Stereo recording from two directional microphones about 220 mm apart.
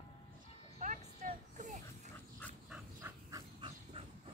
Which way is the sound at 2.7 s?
10° right (ahead or behind).